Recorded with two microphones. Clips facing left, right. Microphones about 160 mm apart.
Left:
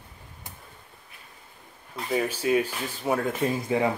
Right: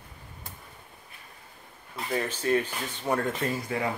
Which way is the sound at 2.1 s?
10° left (ahead or behind).